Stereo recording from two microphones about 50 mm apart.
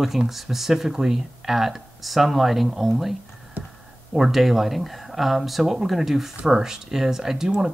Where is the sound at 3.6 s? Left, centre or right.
Right.